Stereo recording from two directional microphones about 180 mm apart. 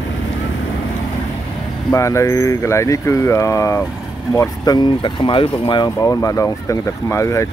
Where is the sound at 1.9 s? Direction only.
15° left (ahead or behind).